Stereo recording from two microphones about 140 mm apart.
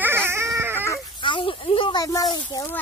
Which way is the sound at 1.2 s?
35° left (ahead or behind).